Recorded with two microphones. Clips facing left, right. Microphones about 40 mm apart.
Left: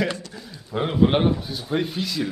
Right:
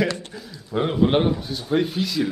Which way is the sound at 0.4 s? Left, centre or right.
Centre.